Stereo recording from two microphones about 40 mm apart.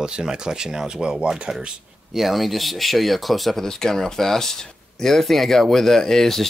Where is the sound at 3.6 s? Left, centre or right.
Centre.